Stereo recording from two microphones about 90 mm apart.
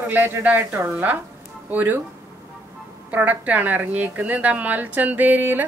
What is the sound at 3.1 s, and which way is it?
A woman's voice, 20° right (ahead or behind).